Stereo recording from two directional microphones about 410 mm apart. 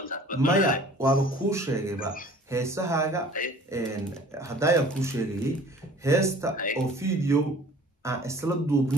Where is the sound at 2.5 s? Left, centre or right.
Centre.